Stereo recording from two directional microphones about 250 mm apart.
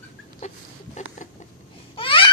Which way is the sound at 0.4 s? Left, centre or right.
Left.